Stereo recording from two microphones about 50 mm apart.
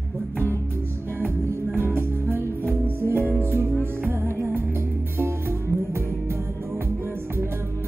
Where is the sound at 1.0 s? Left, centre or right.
Right.